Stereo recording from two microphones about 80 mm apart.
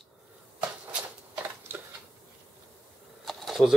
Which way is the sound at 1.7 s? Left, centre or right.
Right.